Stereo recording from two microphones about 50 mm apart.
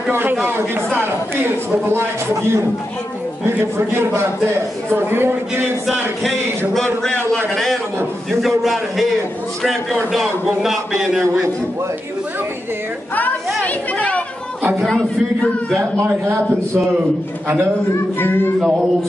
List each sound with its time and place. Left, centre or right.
0.1 s a woman's voice: right
6.7 s a man's voice: centre
10.1 s a man's voice: centre
13.7 s chatter: left
15.8 s a man's voice: right
18.2 s speech: left